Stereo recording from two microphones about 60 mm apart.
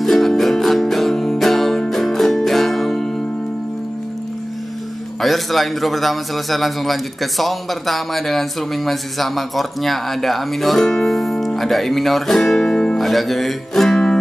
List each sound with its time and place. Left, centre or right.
0.0 s music: centre
5.2 s a man's voice: centre